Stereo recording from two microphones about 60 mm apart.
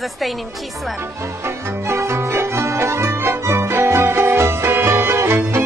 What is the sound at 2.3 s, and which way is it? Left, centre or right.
Music, right.